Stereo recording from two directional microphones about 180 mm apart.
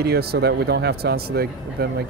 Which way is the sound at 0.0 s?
60° right (ahead or behind).